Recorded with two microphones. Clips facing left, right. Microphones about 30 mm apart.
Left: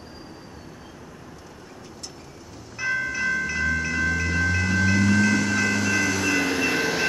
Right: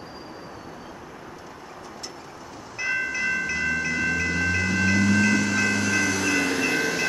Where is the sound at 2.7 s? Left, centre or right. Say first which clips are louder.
Even; centre.